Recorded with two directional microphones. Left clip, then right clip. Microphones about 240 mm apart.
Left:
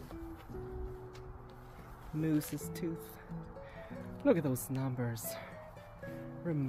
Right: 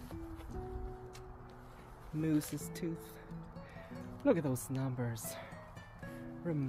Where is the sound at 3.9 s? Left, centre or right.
Centre.